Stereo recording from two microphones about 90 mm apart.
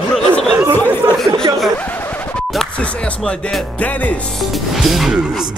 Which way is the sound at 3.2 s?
10° left (ahead or behind).